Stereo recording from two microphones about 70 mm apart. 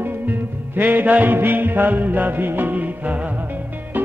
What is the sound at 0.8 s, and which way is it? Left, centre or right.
Music, right.